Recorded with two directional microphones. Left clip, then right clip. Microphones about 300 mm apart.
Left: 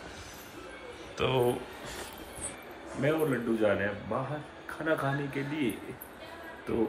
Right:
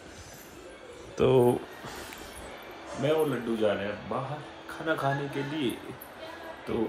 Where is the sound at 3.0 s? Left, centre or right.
Centre.